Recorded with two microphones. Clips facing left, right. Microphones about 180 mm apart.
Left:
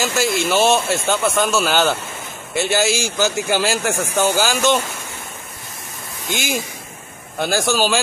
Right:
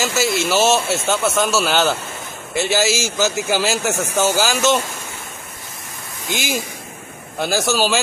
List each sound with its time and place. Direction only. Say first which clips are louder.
0.0 s a man's voice: even; centre (ahead or behind)
6.3 s a man's voice: even; centre (ahead or behind)